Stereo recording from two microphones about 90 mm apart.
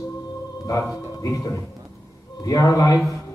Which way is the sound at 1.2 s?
40° left (ahead or behind).